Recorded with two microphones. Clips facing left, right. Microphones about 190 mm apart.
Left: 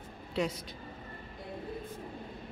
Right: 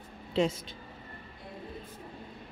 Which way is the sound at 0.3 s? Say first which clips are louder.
Right 5 dB; 25° right (ahead or behind).